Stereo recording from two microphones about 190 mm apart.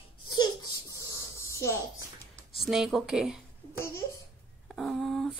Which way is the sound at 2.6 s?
Centre (ahead or behind).